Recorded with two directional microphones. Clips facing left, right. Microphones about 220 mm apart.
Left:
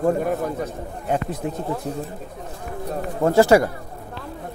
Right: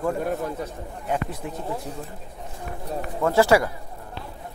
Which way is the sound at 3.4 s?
45° left (ahead or behind).